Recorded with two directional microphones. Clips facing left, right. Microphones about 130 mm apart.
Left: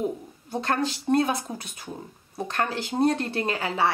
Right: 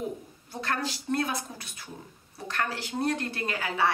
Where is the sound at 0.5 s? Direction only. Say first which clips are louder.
Left 6 dB; 20° left (ahead or behind).